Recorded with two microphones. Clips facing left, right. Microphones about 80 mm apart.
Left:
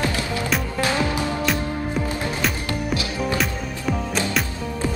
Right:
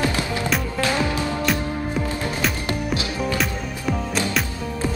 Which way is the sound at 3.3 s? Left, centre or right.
Centre.